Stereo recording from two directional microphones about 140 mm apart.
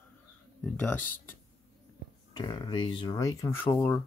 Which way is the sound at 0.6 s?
10° left (ahead or behind).